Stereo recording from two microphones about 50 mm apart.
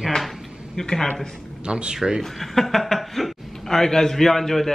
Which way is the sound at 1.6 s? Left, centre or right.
Centre.